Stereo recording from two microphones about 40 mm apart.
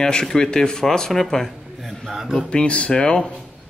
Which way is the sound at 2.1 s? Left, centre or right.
Centre.